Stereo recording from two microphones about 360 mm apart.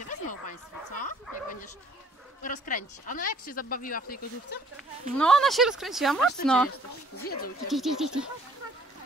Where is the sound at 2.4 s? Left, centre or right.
Left.